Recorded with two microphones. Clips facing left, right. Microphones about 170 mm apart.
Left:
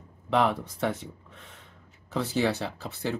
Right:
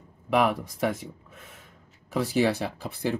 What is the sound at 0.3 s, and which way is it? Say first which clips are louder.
Speech: right 1 dB; 10° right (ahead or behind).